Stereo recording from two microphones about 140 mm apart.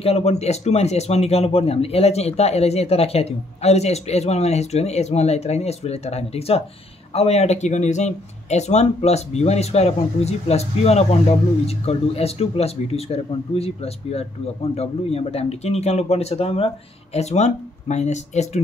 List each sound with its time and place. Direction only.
0.0 s speech: 50° left (ahead or behind)